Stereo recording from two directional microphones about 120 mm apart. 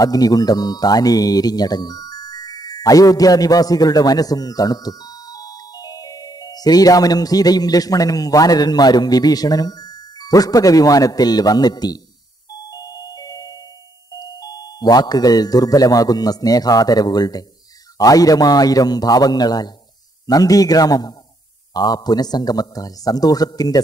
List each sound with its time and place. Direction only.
0.0 s speech: 30° left (ahead or behind)
12.6 s music: 30° left (ahead or behind)
14.1 s a man's voice: 35° left (ahead or behind)